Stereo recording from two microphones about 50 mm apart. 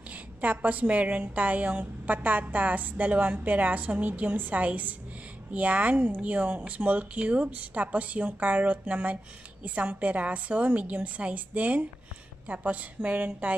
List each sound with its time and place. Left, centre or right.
0.1 s a woman's voice: right